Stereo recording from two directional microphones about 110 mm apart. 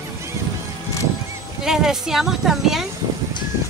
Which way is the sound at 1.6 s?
5° right (ahead or behind).